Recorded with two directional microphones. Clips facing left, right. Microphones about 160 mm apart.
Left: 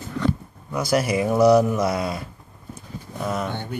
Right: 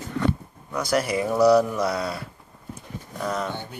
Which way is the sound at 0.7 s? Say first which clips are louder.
Left 2 dB; 10° left (ahead or behind).